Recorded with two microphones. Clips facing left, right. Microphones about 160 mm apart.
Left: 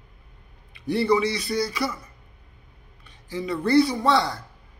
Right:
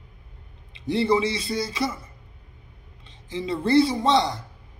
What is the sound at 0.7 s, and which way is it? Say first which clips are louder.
Speech: even; 20° right (ahead or behind).